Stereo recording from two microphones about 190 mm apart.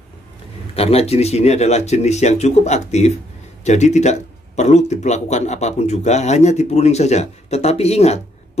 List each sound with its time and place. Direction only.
0.7 s speech: 30° left (ahead or behind)